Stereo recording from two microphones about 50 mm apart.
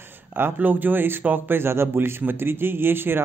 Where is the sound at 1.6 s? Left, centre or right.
Right.